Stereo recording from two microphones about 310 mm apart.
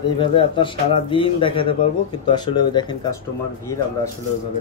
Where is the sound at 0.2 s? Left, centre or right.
Centre.